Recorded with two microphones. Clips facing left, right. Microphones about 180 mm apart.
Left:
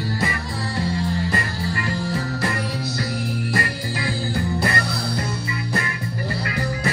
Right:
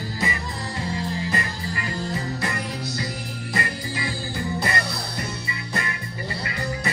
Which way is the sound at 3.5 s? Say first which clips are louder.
Left 3 dB; 60° left (ahead or behind).